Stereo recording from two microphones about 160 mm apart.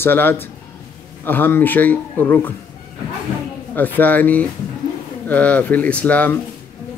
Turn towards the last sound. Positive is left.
turn(degrees=10)  # may be behind; listen again after turning